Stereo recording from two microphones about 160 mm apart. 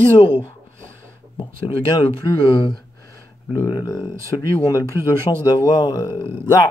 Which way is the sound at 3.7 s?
25° left (ahead or behind).